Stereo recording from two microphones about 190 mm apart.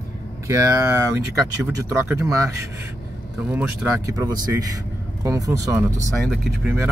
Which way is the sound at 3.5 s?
10° right (ahead or behind).